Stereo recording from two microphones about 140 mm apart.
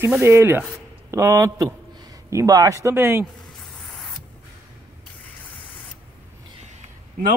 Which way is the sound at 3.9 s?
5° left (ahead or behind).